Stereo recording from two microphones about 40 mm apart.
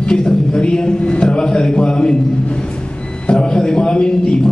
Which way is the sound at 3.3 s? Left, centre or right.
Left.